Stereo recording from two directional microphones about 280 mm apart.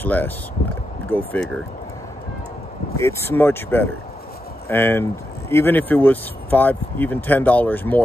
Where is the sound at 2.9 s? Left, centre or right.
Centre.